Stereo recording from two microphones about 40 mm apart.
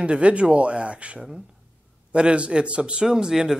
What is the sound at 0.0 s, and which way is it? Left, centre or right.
A man's voice, right.